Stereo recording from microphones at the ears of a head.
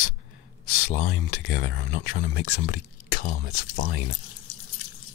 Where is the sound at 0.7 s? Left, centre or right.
Left.